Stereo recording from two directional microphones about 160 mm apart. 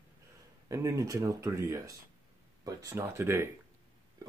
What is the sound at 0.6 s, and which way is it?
Speech, 20° right (ahead or behind).